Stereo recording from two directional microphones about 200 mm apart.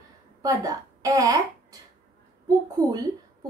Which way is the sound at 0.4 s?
15° right (ahead or behind).